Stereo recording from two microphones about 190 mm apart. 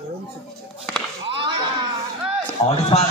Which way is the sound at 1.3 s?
25° right (ahead or behind).